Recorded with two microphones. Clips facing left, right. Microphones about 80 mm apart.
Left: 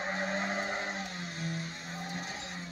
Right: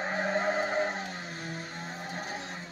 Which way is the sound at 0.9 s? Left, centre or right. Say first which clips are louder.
Right 2 dB; right.